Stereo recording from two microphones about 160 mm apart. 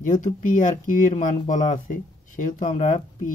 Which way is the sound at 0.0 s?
50° left (ahead or behind).